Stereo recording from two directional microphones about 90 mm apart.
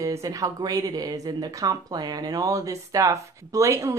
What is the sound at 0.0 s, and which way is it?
Speech, 40° right (ahead or behind).